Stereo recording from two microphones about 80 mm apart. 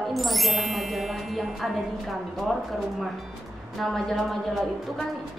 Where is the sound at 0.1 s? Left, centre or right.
Centre.